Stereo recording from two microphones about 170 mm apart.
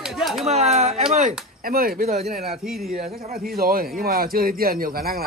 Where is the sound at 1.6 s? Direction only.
55° right (ahead or behind).